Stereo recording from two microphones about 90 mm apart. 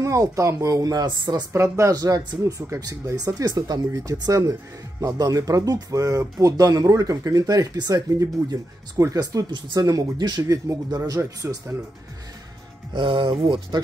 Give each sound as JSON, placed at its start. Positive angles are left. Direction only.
{"t": 0.0, "sound": "speech", "side_deg": -35}
{"t": 1.0, "sound": "speech", "side_deg": -50}
{"t": 1.5, "sound": "speech", "side_deg": -35}
{"t": 2.0, "sound": "speech", "side_deg": -45}
{"t": 2.8, "sound": "speech", "side_deg": -45}
{"t": 10.4, "sound": "speech", "side_deg": -35}
{"t": 12.9, "sound": "speech", "side_deg": -70}